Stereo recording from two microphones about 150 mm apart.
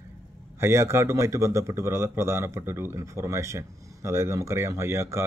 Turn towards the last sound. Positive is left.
turn(degrees=-15)  # may be behind; listen again after turning